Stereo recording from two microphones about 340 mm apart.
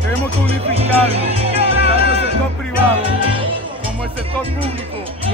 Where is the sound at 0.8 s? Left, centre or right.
Centre.